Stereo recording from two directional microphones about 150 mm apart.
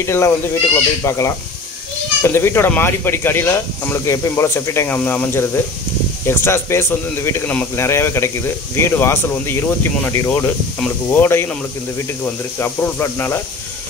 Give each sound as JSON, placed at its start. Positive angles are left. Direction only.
{"t": 0.0, "sound": "speech", "side_deg": 20}
{"t": 12.5, "sound": "speech", "side_deg": 15}